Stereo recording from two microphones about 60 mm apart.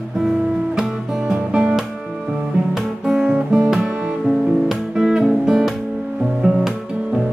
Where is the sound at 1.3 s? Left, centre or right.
Centre.